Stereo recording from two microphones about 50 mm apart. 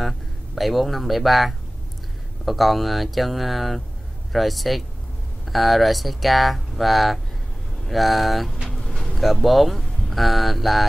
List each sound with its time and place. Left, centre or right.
0.6 s speech: centre
8.7 s vehicle: centre
9.2 s speech: centre